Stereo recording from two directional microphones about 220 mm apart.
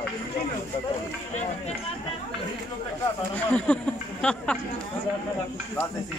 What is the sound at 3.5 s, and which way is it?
Speech, 5° left (ahead or behind).